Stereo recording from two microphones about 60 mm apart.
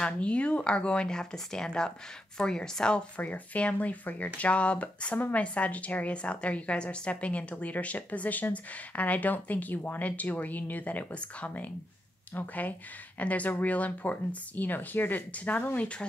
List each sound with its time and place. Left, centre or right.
0.0 s speech: left